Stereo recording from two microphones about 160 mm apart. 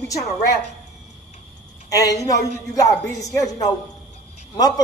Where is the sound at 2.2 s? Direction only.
20° left (ahead or behind).